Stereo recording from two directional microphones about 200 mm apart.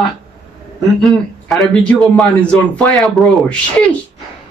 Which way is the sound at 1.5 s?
5° left (ahead or behind).